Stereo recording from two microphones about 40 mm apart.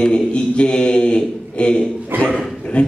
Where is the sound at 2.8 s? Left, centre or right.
Left.